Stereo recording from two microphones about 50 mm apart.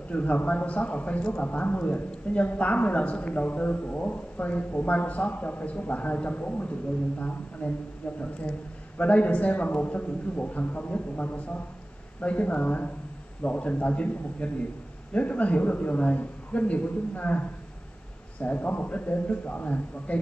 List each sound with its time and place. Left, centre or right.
0.1 s a man's voice: left
8.9 s a man's voice: left